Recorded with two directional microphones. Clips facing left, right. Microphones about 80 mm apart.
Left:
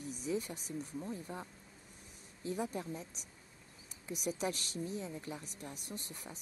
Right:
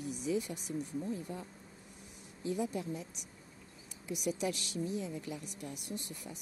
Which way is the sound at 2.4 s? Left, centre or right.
Left.